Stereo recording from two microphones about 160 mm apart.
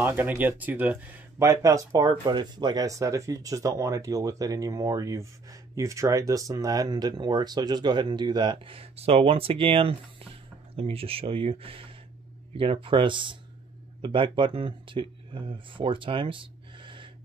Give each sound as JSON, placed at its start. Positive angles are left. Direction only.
{"t": 0.0, "sound": "speech", "side_deg": -15}